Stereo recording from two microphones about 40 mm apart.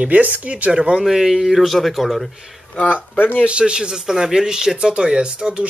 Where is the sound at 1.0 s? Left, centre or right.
Centre.